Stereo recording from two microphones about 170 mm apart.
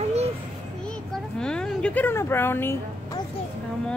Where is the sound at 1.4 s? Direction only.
5° left (ahead or behind).